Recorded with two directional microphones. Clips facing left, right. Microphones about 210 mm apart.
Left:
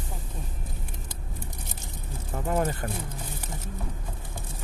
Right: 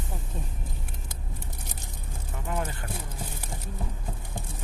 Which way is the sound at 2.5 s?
45° left (ahead or behind).